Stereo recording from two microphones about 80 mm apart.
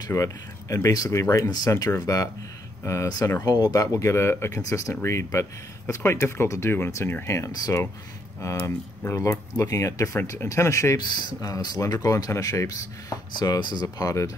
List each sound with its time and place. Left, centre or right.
0.1 s speech: left
3.3 s speech: left
11.0 s speech: left
13.3 s speech: left
13.8 s speech: left